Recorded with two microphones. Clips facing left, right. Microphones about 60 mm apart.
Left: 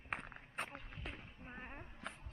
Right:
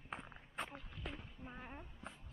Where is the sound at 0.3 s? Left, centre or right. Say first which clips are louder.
Left 1 dB; left.